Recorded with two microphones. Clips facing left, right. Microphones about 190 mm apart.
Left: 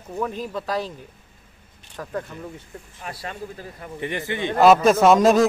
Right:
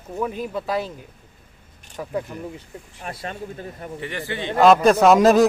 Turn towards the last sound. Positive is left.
turn(degrees=0)  # may be behind; listen again after turning